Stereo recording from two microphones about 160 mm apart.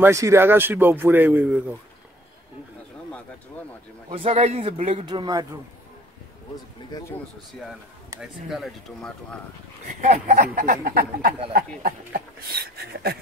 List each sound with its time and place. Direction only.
0.0 s a man's voice: 20° right (ahead or behind)
4.1 s speech: 40° right (ahead or behind)
5.0 s a man's voice: 30° right (ahead or behind)
8.2 s speech: centre (ahead or behind)
10.0 s speech: 50° right (ahead or behind); by 13.2 s 75° right (ahead or behind)